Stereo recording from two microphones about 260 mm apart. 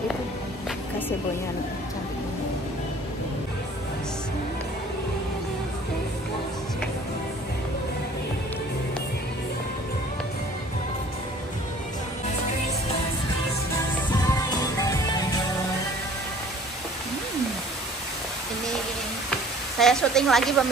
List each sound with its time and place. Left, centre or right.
14.1 s music: centre
19.8 s a woman's voice: centre